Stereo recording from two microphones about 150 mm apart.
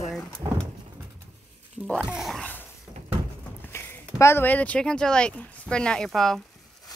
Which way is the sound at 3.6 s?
15° left (ahead or behind).